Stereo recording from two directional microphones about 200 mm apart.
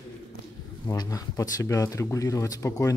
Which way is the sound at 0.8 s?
20° left (ahead or behind).